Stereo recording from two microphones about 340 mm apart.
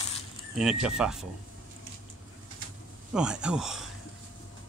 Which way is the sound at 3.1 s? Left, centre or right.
Centre.